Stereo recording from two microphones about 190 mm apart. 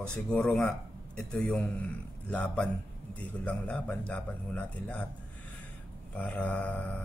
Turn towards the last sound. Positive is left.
turn(degrees=5)  # may be behind; listen again after turning